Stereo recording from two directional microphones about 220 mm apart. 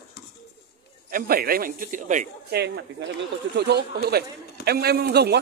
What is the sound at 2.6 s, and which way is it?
A man's voice, 50° right (ahead or behind).